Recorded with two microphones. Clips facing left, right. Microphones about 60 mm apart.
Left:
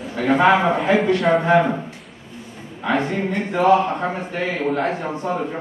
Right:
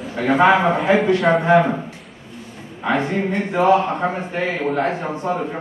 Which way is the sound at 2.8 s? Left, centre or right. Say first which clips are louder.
Right 1 dB; centre.